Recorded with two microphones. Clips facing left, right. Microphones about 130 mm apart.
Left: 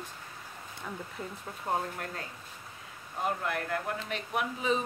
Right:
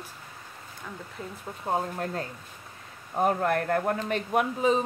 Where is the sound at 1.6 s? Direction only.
25° right (ahead or behind).